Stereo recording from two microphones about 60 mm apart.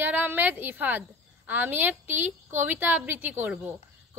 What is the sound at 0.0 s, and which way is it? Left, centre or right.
Female singing, right.